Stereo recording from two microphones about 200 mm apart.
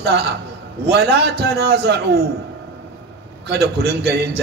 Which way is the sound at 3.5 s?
55° right (ahead or behind).